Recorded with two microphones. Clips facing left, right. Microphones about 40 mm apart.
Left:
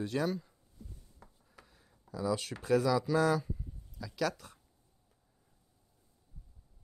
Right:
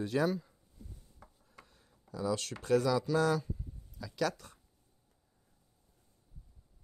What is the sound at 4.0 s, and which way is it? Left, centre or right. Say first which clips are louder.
Speech: even; centre.